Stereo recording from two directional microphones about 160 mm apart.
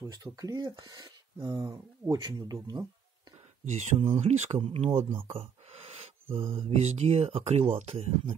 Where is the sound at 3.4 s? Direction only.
45° right (ahead or behind).